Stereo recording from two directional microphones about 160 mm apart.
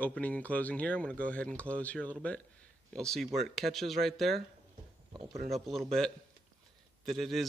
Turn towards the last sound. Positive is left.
turn(degrees=0)  # may be behind; listen again after turning